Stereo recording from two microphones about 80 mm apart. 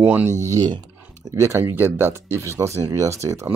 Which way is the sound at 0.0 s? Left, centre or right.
Right.